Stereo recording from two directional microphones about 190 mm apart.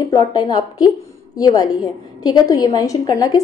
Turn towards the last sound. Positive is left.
turn(degrees=20)  # may be behind; listen again after turning